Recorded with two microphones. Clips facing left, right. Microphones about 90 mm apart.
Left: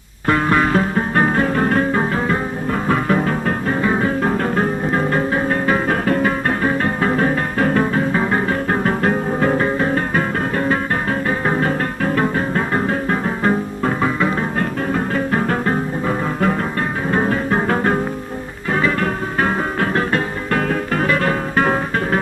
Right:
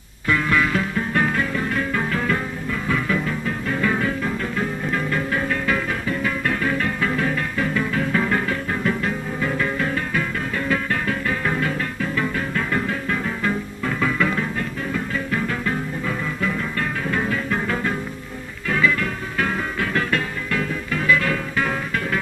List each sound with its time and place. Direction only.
0.3 s music: 40° left (ahead or behind)
2.9 s music: 45° left (ahead or behind)
3.8 s music: 30° left (ahead or behind)
4.2 s music: 50° left (ahead or behind); by 8.5 s 30° left (ahead or behind)
8.6 s music: 50° left (ahead or behind); by 14.4 s 30° left (ahead or behind)
14.6 s music: 50° left (ahead or behind)
20.5 s music: 50° left (ahead or behind)